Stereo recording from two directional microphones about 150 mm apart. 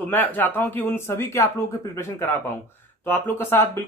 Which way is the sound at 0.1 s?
10° left (ahead or behind).